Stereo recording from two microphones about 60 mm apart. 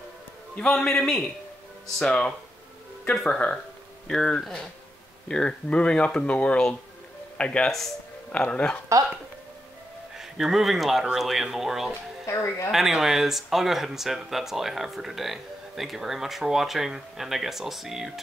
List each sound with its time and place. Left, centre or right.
0.6 s a man's voice: centre
4.1 s a man's voice: centre
10.1 s speech: centre
12.3 s speech: left
12.7 s speech: centre